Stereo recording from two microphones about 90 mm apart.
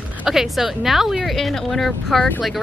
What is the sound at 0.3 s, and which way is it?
Speech, 5° right (ahead or behind).